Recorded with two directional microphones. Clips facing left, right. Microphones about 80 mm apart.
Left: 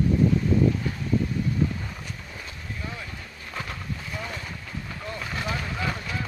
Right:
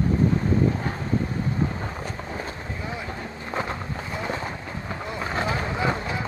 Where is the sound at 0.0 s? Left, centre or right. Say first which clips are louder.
Even; right.